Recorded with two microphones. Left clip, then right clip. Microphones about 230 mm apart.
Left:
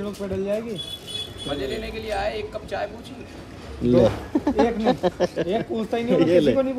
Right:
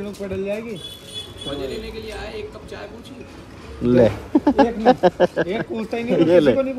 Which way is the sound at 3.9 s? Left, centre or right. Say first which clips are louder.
Right 2 dB; centre.